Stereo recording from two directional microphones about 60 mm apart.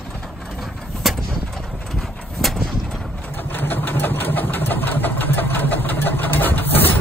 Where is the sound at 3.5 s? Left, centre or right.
Left.